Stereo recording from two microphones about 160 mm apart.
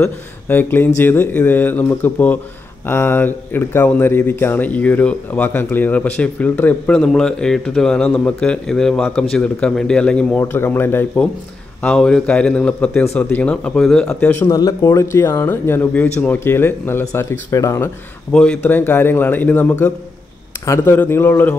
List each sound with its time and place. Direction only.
0.0 s speech: 15° left (ahead or behind)
14.4 s speech: 25° left (ahead or behind)
18.3 s speech: 5° left (ahead or behind)